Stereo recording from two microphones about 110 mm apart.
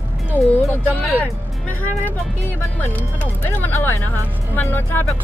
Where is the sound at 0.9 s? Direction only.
15° left (ahead or behind).